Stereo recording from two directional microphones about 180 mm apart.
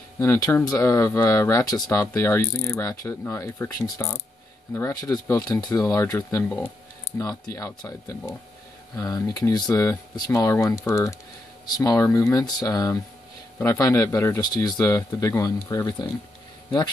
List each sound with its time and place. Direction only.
0.2 s speech: 15° left (ahead or behind)